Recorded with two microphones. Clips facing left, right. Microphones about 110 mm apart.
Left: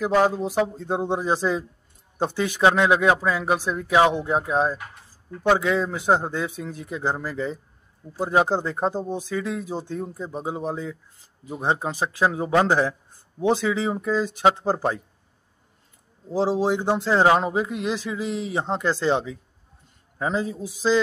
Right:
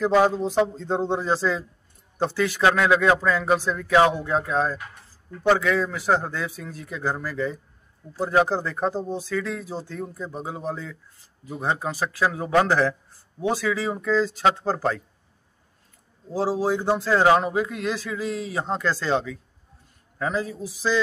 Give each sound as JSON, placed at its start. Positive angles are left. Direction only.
{"t": 0.3, "sound": "speech", "side_deg": 15}
{"t": 16.3, "sound": "speech", "side_deg": 20}